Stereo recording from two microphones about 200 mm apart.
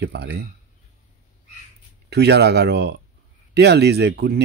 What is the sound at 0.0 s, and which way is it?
Speech, 55° right (ahead or behind).